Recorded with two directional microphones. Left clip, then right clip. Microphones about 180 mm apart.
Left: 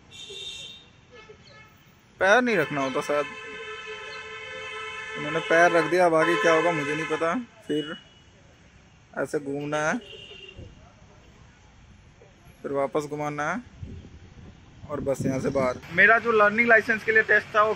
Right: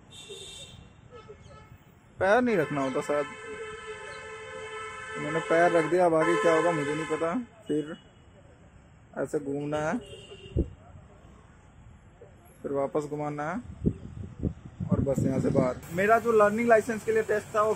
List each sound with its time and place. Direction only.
2.1 s speech: 5° right (ahead or behind)
4.7 s a sound: 25° right (ahead or behind)
5.3 s speech: centre (ahead or behind)
9.1 s speech: centre (ahead or behind)
12.6 s speech: centre (ahead or behind)
14.9 s speech: 5° right (ahead or behind)